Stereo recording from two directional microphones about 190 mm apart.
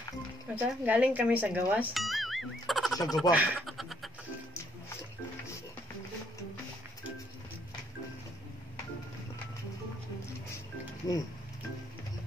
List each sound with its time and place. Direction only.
0.6 s speech: 10° right (ahead or behind)
3.2 s a sound: 5° right (ahead or behind)
11.1 s speech: 20° left (ahead or behind)